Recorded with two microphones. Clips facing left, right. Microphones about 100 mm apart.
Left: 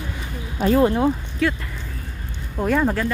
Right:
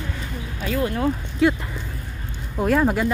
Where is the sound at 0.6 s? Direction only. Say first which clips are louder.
Left 6 dB; 30° left (ahead or behind).